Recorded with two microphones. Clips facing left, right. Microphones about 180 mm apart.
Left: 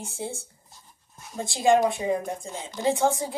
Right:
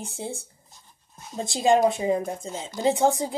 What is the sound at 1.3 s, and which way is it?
Speech, 20° right (ahead or behind).